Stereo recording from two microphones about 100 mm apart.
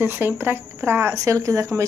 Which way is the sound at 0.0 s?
20° right (ahead or behind).